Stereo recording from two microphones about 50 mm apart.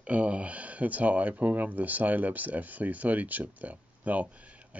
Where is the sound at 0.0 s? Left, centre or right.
Right.